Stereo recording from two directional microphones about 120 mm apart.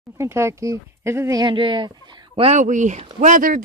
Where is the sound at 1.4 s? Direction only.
45° right (ahead or behind).